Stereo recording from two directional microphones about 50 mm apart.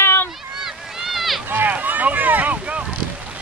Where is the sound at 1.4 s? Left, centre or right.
Right.